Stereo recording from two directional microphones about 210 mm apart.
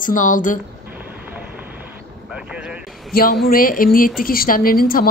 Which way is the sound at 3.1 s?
45° left (ahead or behind).